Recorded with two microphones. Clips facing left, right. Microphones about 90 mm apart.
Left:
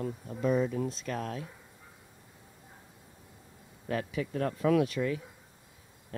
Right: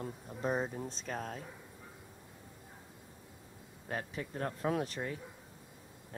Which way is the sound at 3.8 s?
85° left.